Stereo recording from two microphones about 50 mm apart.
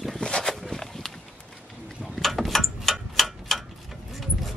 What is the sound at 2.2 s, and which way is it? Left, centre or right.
Tick-tock, centre.